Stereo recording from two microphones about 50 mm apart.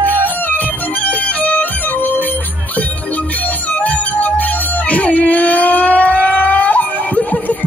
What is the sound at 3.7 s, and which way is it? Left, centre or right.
Music, left.